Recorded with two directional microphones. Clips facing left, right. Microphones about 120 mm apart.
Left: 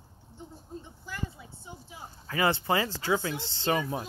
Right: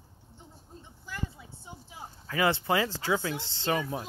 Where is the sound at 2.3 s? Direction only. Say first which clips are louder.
Even; centre (ahead or behind).